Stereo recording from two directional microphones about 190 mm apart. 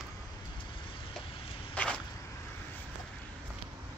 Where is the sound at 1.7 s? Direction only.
5° left (ahead or behind).